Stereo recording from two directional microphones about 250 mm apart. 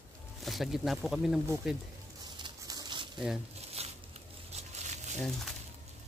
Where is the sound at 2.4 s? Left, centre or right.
Centre.